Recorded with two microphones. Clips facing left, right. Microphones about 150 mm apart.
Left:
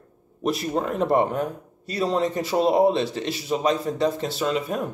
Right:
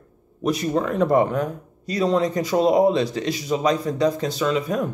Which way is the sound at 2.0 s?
30° left (ahead or behind).